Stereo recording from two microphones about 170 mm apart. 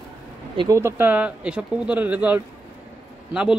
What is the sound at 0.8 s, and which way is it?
A man's voice, 10° right (ahead or behind).